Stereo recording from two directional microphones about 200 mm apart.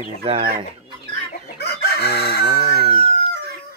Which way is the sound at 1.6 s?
55° left (ahead or behind).